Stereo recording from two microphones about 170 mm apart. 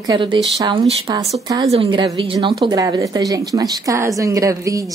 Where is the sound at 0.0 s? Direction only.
25° right (ahead or behind).